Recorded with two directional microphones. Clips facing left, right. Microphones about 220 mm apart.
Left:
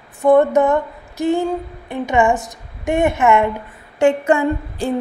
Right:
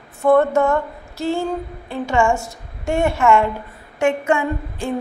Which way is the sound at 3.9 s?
35° left (ahead or behind).